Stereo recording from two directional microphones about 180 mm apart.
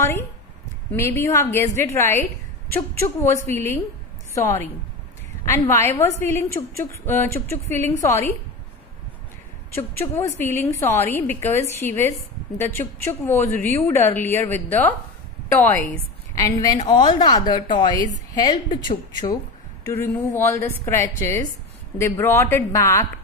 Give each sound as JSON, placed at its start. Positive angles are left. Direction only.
{"t": 0.9, "sound": "a woman's voice", "side_deg": 15}
{"t": 9.8, "sound": "a woman's voice", "side_deg": 15}
{"t": 16.3, "sound": "a woman's voice", "side_deg": 20}
{"t": 19.9, "sound": "a woman's voice", "side_deg": 10}